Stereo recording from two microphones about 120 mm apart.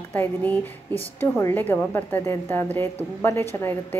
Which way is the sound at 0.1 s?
15° left (ahead or behind).